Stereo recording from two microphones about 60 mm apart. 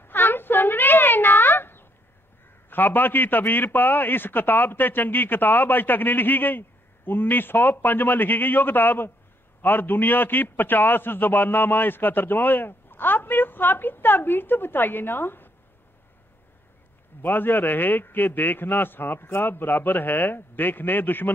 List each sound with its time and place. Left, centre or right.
0.0 s a sound: left
2.7 s a man's voice: left
17.2 s a man's voice: left